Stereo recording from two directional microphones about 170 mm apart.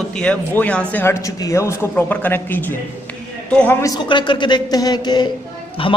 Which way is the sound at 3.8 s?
25° left (ahead or behind).